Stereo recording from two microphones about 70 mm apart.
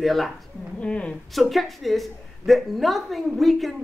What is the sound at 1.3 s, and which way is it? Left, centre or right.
A woman's voice, centre.